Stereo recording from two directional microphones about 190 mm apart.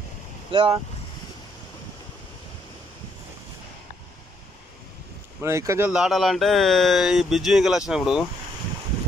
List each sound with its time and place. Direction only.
0.5 s speech: 25° right (ahead or behind)
5.4 s speech: 15° right (ahead or behind)